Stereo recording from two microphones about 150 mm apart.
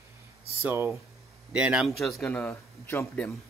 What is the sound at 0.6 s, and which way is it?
A man's voice, 15° right (ahead or behind).